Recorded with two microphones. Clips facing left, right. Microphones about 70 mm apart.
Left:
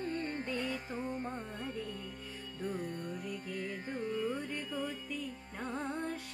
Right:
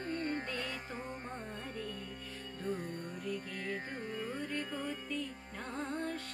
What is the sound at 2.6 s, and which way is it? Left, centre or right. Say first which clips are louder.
Music: left 1 dB; centre.